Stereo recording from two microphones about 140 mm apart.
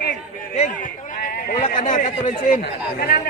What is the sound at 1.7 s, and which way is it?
Speech, 70° left (ahead or behind).